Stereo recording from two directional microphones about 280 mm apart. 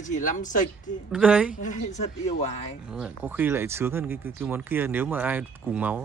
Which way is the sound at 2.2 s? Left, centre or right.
Left.